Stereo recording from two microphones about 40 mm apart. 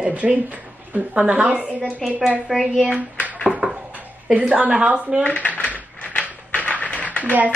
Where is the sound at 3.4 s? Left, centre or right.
Right.